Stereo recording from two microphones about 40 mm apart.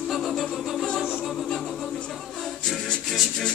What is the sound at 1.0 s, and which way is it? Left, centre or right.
Music, centre.